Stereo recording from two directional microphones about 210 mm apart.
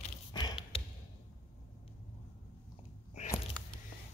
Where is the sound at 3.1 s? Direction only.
35° left (ahead or behind).